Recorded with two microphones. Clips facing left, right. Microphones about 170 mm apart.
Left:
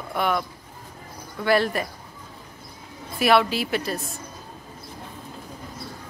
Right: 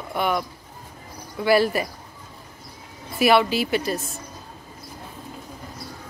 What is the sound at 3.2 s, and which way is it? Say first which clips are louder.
Speech: right 1 dB; centre (ahead or behind).